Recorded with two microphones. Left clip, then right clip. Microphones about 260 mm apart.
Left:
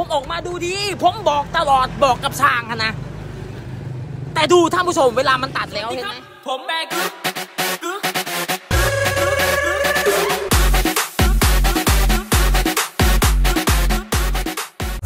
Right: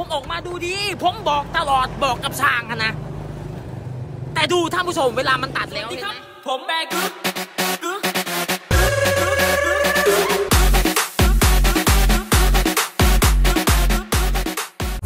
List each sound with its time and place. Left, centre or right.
0.1 s a man's voice: centre
4.3 s a man's voice: centre
7.8 s music: centre